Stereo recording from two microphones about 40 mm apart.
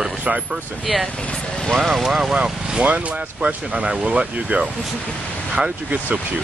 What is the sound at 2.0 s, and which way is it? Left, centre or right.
Speech, centre.